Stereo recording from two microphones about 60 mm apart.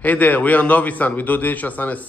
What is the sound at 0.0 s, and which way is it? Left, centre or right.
Speech, left.